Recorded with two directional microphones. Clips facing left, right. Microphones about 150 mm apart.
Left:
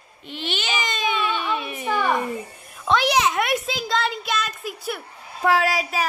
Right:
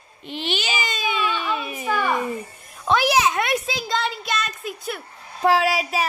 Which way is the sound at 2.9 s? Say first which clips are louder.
Right 1 dB; 5° right (ahead or behind).